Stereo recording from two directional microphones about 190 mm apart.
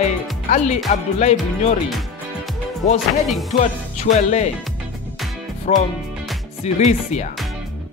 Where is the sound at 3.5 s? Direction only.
35° left (ahead or behind).